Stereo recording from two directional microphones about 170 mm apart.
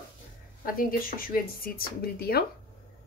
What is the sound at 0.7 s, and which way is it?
Speech, 55° left (ahead or behind).